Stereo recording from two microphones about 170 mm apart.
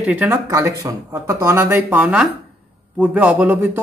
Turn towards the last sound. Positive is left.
turn(degrees=-10)  # may be behind; listen again after turning